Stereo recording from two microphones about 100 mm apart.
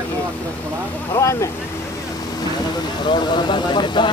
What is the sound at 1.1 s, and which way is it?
Speech, 30° left (ahead or behind).